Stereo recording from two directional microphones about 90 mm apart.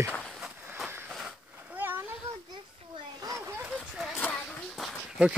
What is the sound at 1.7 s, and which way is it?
Splash, 20° right (ahead or behind).